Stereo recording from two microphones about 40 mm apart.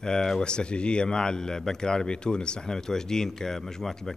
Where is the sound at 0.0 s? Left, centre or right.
Centre.